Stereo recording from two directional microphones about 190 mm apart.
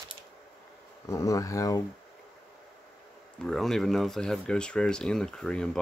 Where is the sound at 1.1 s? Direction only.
15° left (ahead or behind).